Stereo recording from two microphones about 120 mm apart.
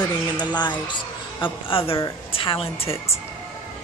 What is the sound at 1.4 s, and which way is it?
A woman's voice, 50° left (ahead or behind).